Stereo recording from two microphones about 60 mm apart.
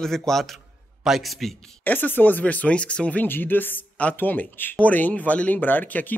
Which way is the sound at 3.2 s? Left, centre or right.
Left.